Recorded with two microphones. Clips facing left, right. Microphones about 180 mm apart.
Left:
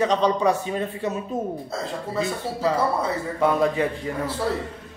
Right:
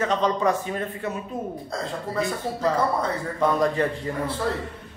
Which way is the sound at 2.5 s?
10° left (ahead or behind).